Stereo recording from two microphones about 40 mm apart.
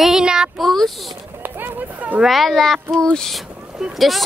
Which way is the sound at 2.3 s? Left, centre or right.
Centre.